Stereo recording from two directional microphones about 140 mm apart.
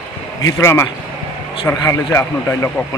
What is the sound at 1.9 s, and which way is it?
Speech, 15° left (ahead or behind).